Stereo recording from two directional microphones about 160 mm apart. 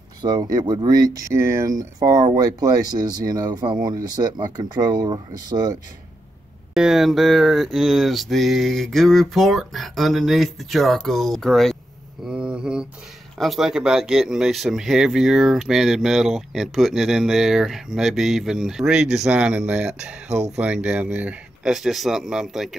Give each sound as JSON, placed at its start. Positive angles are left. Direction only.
{"t": 0.2, "sound": "speech", "side_deg": -25}
{"t": 6.7, "sound": "speech", "side_deg": 0}
{"t": 12.3, "sound": "mantra", "side_deg": -5}
{"t": 13.4, "sound": "speech", "side_deg": 0}
{"t": 20.2, "sound": "speech", "side_deg": -45}
{"t": 20.5, "sound": "speech", "side_deg": -5}